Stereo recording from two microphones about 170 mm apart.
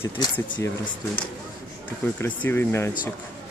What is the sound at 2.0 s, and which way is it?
Speech, 10° left (ahead or behind).